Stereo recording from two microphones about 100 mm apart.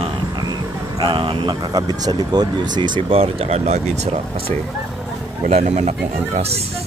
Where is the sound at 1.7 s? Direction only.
40° right (ahead or behind).